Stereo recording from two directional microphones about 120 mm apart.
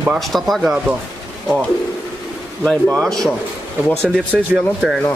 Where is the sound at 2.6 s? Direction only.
10° left (ahead or behind).